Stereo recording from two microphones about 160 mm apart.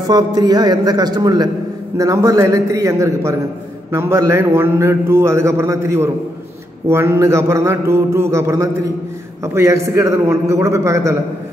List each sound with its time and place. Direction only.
0.0 s a man's voice: 25° right (ahead or behind)